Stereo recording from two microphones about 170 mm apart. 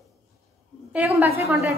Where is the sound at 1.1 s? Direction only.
15° right (ahead or behind).